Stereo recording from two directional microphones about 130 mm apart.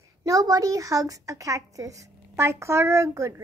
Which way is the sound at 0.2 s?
25° right (ahead or behind).